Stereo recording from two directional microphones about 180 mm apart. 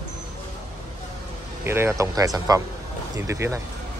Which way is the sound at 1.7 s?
15° right (ahead or behind).